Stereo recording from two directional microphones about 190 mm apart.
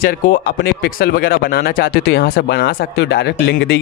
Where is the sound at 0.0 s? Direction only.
50° left (ahead or behind).